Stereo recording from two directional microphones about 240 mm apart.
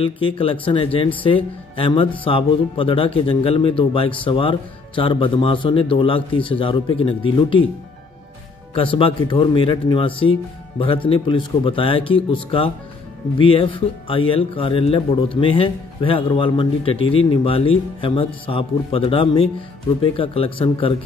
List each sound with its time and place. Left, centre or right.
0.0 s speech: left
8.7 s speech: left